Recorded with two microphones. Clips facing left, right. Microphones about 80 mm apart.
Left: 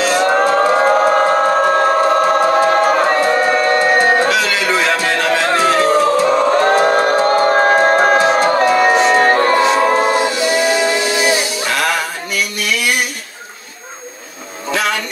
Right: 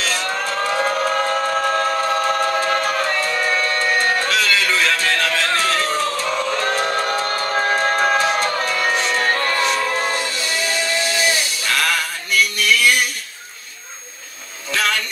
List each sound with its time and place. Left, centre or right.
0.0 s siren: left
0.3 s civil defense siren: left
2.6 s music: left
4.3 s music: centre
6.3 s music: left
8.2 s music: left
8.5 s music: left
9.8 s train: left
10.0 s music: centre
11.3 s music: left
14.7 s a sound: left